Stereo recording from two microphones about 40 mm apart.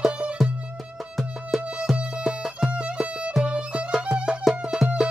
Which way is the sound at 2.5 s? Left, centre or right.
Right.